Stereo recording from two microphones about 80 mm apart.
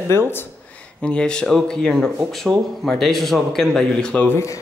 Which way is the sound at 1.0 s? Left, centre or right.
Centre.